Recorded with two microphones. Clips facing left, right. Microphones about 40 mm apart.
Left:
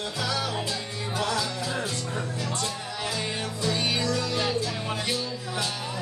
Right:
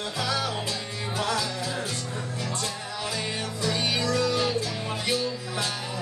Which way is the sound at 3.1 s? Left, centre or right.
Centre.